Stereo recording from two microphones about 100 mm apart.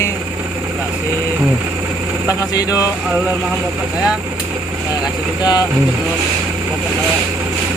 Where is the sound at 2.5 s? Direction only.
40° left (ahead or behind).